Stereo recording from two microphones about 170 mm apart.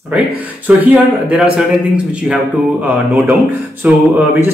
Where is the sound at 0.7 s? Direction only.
5° right (ahead or behind).